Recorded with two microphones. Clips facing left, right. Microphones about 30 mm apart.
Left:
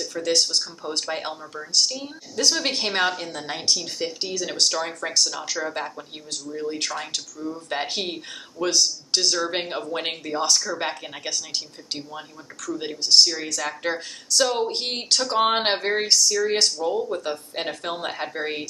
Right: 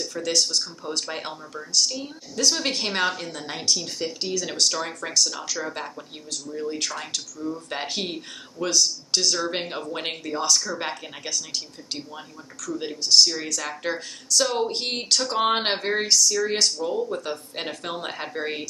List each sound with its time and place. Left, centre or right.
0.3 s speech: centre
1.9 s speech: centre
8.6 s a woman's voice: left
9.5 s speech: centre
11.2 s a woman's voice: centre
12.1 s speech: centre